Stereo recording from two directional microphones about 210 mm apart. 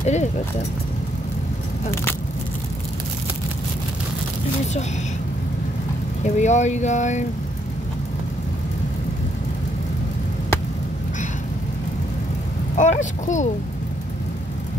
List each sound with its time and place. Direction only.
0.0 s speech: 35° left (ahead or behind)
6.2 s speech: 35° left (ahead or behind)
12.7 s speech: 35° left (ahead or behind)